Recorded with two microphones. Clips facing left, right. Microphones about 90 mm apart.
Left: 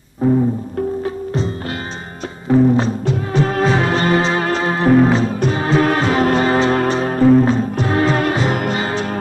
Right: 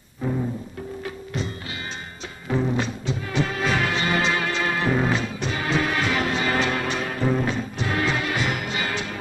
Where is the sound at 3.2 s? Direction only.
40° left (ahead or behind).